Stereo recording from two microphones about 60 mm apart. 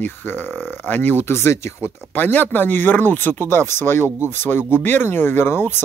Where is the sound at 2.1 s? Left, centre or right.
Left.